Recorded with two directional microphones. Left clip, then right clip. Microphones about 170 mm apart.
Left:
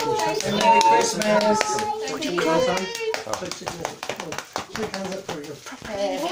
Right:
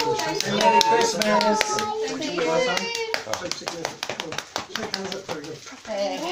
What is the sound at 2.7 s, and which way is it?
Speech, 10° left (ahead or behind).